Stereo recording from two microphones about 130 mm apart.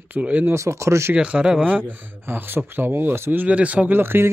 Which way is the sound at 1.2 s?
10° right (ahead or behind).